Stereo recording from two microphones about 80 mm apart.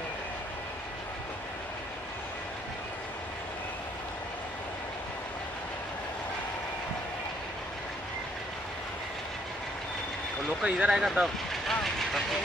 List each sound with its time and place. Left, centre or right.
10.6 s vehicle: centre